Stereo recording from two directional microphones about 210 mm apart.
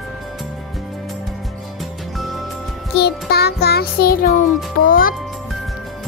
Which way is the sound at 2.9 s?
50° left (ahead or behind).